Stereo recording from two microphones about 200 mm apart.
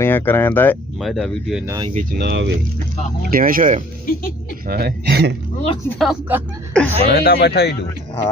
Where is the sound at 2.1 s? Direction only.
60° right (ahead or behind).